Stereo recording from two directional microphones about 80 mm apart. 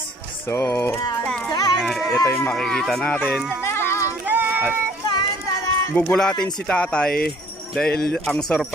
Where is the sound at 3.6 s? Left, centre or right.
Left.